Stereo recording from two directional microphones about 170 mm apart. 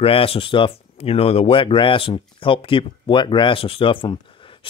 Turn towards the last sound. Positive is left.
turn(degrees=30)  # may be behind; listen again after turning